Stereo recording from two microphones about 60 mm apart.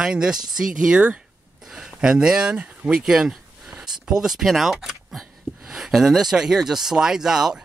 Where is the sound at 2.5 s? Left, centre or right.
Right.